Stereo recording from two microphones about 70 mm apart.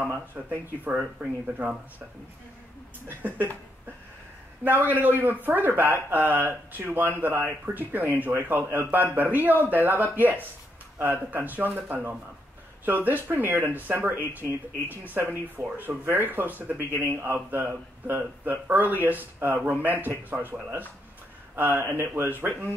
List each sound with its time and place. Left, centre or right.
0.1 s speech: right
3.2 s speech: right
4.6 s speech: right
21.5 s speech: right